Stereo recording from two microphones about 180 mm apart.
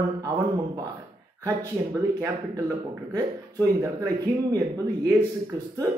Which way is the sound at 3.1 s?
15° right (ahead or behind).